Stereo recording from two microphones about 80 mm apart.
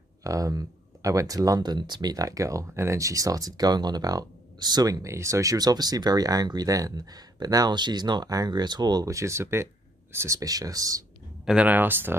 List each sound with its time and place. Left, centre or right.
0.2 s speech: right
9.0 s speech: right
11.4 s speech: centre